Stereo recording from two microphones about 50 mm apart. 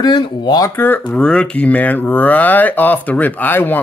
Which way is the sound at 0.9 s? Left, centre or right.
Centre.